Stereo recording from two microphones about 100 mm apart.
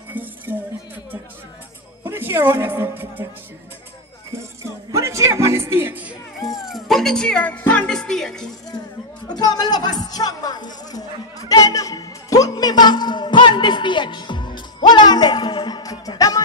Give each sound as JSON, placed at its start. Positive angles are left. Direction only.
{"t": 0.1, "sound": "music", "side_deg": -15}
{"t": 2.0, "sound": "a woman's voice", "side_deg": -20}
{"t": 4.3, "sound": "music", "side_deg": -30}
{"t": 6.4, "sound": "speech", "side_deg": 0}
{"t": 9.3, "sound": "music", "side_deg": 40}